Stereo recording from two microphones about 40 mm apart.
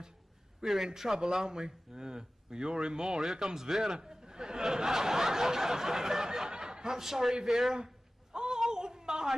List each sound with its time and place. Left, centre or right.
0.6 s a man's voice: centre
7.7 s a sound: centre
8.5 s wail: centre